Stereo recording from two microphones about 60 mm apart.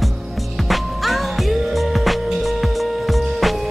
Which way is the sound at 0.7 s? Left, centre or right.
Centre.